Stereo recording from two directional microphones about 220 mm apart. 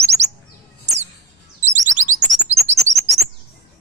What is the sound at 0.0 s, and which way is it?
Chirp, 30° right (ahead or behind).